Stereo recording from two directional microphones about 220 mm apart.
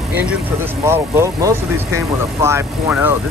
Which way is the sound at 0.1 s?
5° right (ahead or behind).